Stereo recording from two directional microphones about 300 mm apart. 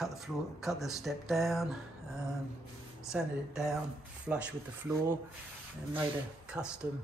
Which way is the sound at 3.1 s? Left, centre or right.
Centre.